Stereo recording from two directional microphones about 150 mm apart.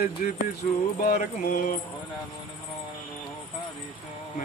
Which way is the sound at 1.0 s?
85° left.